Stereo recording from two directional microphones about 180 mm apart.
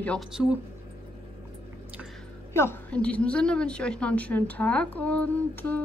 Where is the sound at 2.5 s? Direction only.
10° left (ahead or behind).